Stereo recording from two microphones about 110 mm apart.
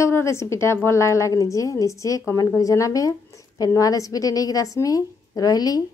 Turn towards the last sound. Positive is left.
turn(degrees=35)  # may be behind; listen again after turning